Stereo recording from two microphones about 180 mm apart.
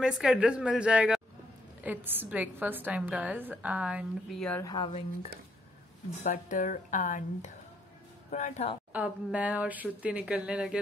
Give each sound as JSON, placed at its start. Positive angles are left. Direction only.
{"t": 0.0, "sound": "a woman's voice", "side_deg": -5}
{"t": 4.6, "sound": "speech", "side_deg": 25}
{"t": 6.2, "sound": "speech", "side_deg": 45}
{"t": 8.9, "sound": "a woman's voice", "side_deg": -5}